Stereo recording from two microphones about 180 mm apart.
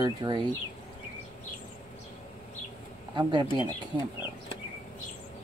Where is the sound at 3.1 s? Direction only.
25° right (ahead or behind).